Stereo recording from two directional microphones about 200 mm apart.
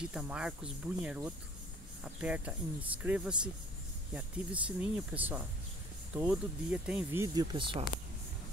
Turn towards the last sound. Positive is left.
turn(degrees=-25)  # may be behind; listen again after turning